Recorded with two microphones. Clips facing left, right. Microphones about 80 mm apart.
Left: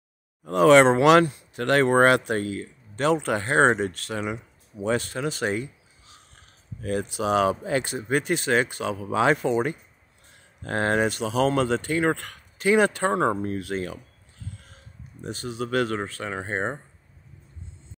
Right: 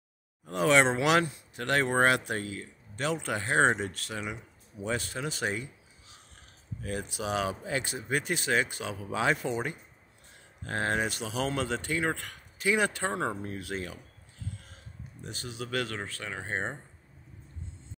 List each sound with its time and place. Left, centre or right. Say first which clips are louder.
0.5 s speech: left 9 dB; left
4.8 s speech: left 7 dB; left
6.8 s speech: left 8 dB; left
8.7 s speech: left 8 dB; left
15.2 s speech: left 9 dB; left